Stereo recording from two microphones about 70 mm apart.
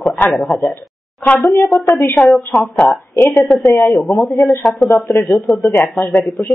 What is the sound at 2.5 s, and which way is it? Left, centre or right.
Speech, centre.